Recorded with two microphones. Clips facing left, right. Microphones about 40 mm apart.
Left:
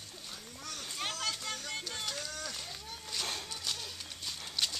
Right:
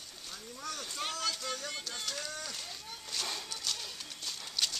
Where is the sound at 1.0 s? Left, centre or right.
Centre.